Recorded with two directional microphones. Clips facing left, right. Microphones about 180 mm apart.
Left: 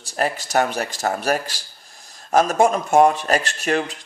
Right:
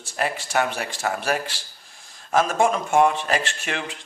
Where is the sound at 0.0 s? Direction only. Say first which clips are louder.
Left 3 dB; 40° left (ahead or behind).